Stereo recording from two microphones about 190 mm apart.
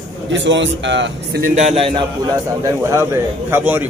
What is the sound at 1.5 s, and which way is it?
Speech, 35° right (ahead or behind).